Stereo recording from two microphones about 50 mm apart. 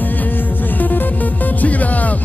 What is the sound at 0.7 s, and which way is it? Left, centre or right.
Music, left.